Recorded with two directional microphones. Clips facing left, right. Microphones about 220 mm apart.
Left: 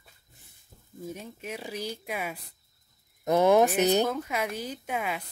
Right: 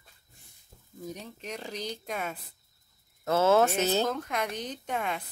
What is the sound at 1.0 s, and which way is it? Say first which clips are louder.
Speech: left 1 dB; 5° left (ahead or behind).